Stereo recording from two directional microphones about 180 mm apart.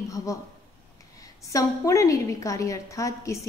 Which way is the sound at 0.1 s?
20° left (ahead or behind).